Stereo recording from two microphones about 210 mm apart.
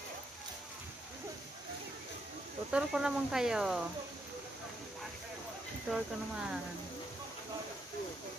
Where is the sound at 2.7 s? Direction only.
5° right (ahead or behind).